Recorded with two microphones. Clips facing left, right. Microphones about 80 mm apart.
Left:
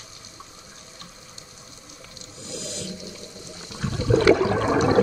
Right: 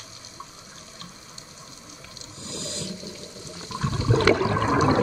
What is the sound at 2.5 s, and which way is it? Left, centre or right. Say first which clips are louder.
Whale vocalization: left 1 dB; right.